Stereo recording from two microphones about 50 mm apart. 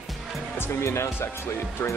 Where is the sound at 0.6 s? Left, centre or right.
Left.